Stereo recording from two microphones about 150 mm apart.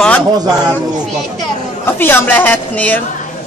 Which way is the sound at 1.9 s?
15° left (ahead or behind).